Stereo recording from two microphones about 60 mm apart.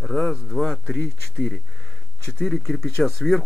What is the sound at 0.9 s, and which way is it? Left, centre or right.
Speech, centre.